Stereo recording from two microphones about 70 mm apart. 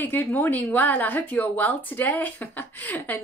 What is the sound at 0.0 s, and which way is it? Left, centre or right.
Speech, left.